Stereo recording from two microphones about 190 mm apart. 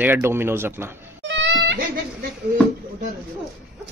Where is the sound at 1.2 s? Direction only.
70° right (ahead or behind).